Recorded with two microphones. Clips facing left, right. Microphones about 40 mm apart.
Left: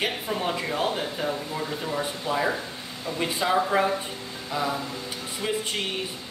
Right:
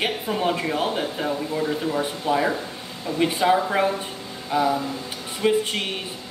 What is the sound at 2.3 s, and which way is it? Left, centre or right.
Speech, right.